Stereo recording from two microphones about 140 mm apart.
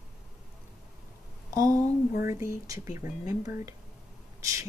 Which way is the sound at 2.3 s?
20° right (ahead or behind).